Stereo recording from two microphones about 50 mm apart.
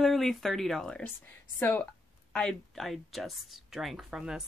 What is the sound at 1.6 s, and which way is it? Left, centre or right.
Speech, left.